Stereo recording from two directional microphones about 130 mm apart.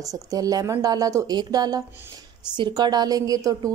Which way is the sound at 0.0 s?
25° right (ahead or behind).